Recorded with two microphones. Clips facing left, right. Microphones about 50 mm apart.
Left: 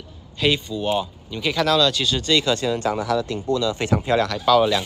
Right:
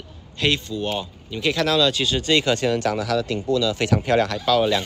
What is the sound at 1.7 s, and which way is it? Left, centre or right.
Speech, right.